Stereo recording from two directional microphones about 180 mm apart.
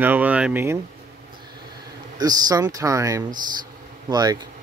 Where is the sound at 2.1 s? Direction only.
20° right (ahead or behind).